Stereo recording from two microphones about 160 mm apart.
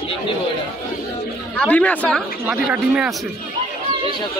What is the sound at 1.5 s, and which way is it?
Speech, 5° left (ahead or behind).